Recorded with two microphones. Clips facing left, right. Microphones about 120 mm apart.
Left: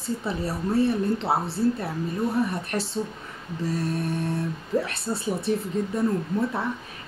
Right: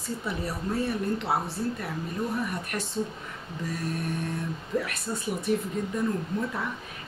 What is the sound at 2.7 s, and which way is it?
Speech, 30° left (ahead or behind).